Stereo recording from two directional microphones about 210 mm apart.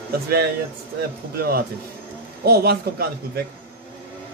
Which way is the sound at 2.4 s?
50° right (ahead or behind).